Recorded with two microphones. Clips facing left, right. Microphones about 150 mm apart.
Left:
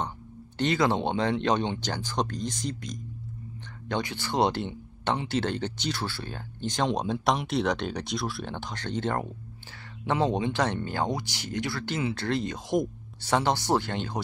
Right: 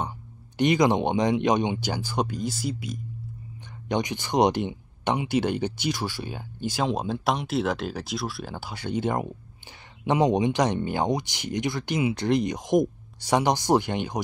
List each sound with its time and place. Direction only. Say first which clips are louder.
0.6 s speech: right 4 dB; 15° right (ahead or behind)